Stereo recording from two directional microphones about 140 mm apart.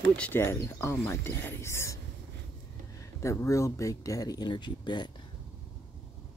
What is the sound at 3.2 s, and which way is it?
Speech, 20° left (ahead or behind).